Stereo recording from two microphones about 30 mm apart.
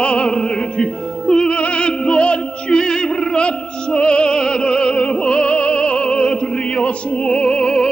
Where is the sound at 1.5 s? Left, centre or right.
Left.